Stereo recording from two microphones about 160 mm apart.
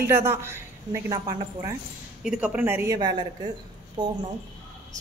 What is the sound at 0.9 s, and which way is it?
Speech, 20° right (ahead or behind).